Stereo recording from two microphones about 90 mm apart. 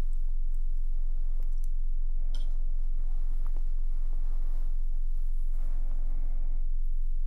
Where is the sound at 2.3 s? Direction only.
55° right (ahead or behind).